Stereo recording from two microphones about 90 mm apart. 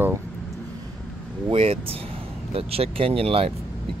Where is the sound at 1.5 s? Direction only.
90° right.